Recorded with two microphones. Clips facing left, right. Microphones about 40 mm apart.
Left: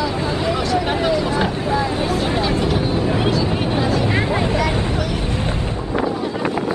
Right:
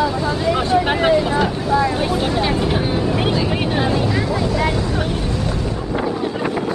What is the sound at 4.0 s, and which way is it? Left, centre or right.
Vehicle, left.